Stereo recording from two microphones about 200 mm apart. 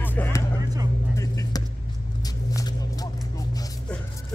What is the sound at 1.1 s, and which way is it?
Music, 15° left (ahead or behind).